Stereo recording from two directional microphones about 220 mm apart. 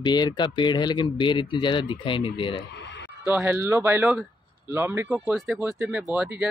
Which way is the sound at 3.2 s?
10° right (ahead or behind).